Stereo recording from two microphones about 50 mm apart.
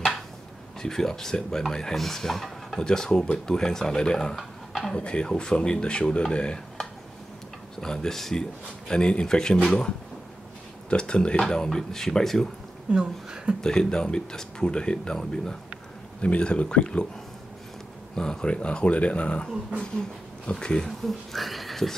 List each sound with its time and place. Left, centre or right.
0.7 s speech: centre
4.4 s a sound: centre
4.9 s speech: centre
12.9 s speech: centre
13.6 s speech: centre
18.1 s speech: centre
21.0 s speech: centre